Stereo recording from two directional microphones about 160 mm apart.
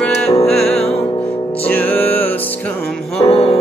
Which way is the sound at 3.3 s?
40° left (ahead or behind).